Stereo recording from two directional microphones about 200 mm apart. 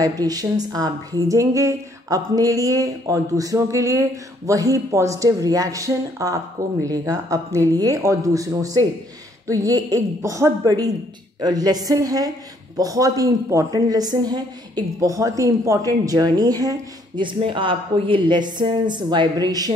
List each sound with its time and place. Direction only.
0.0 s a woman's voice: 20° right (ahead or behind)